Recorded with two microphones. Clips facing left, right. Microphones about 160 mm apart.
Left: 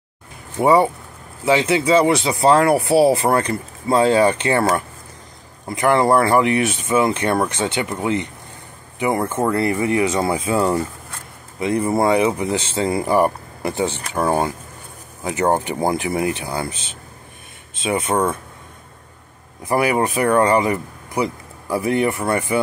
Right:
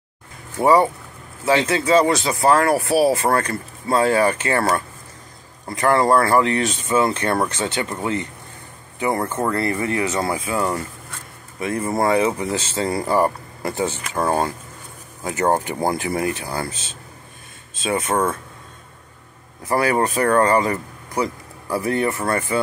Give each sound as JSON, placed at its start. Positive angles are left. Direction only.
{"t": 0.6, "sound": "speech", "side_deg": 15}
{"t": 15.2, "sound": "speech", "side_deg": 15}
{"t": 17.8, "sound": "speech", "side_deg": 20}
{"t": 19.6, "sound": "speech", "side_deg": 15}